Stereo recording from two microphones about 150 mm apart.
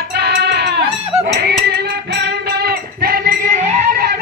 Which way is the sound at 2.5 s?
90° right.